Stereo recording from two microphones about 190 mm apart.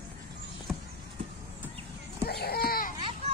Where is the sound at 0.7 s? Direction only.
10° right (ahead or behind).